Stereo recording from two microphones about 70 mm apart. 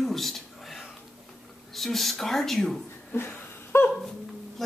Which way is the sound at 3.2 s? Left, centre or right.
Left.